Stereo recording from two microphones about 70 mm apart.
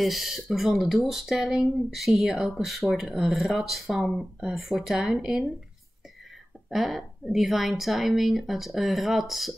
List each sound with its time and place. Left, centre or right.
0.0 s speech: centre
6.7 s speech: centre